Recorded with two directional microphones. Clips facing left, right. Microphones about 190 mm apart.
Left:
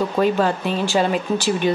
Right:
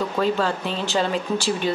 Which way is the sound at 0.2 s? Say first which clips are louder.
Left 4 dB; 15° left (ahead or behind).